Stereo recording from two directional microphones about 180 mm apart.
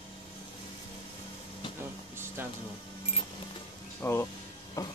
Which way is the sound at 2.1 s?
10° right (ahead or behind).